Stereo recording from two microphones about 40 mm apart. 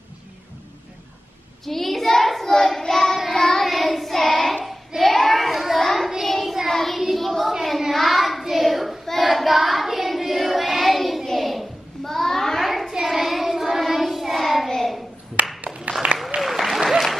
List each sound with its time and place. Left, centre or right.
1.7 s child singing: centre
2.5 s child singing: centre
3.6 s child singing: centre
5.1 s children playing: centre
6.2 s child singing: centre
11.3 s a sound: centre
12.6 s child singing: centre
12.9 s child singing: centre
15.4 s a sound: right
15.9 s applause: right
16.3 s applause: centre